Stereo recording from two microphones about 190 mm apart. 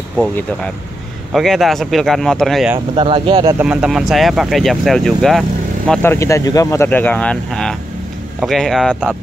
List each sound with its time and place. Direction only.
1.3 s speech: centre (ahead or behind)
3.0 s speech: 25° right (ahead or behind)
3.5 s speech: 5° right (ahead or behind)
5.9 s speech: 15° left (ahead or behind)